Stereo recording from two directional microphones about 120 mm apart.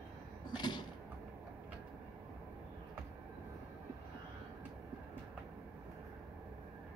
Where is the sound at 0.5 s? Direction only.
40° left (ahead or behind).